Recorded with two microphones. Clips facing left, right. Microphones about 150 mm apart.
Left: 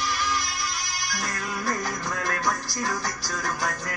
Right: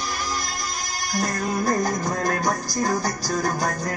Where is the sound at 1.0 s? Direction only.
40° right (ahead or behind).